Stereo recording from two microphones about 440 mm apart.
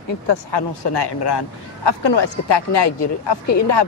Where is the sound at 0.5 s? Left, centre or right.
Left.